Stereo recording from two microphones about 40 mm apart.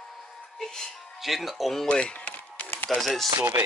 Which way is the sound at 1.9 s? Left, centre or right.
Left.